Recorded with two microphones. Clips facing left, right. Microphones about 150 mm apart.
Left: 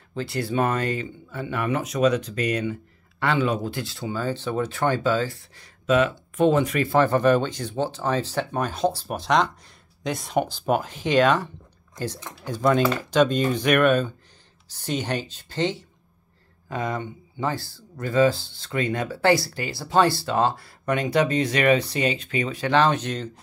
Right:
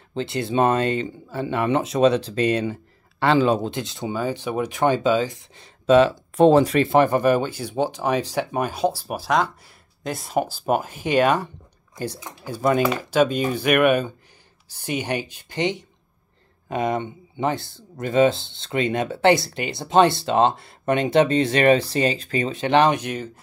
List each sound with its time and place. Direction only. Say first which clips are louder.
0.1 s speech: right 2 dB; 25° right (ahead or behind)
5.9 s speech: right 5 dB; 30° right (ahead or behind)
7.1 s speech: even; 10° right (ahead or behind); by 22.5 s 35° right (ahead or behind)
22.5 s speech: right 3 dB; 20° right (ahead or behind)